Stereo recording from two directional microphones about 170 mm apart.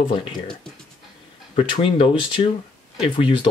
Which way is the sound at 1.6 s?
30° left (ahead or behind).